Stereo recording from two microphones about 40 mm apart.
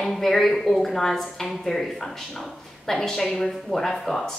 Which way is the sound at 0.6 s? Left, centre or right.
Centre.